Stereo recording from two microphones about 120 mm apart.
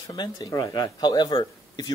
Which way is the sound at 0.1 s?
35° left (ahead or behind).